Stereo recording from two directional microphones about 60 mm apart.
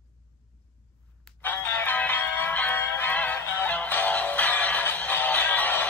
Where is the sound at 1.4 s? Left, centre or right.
Left.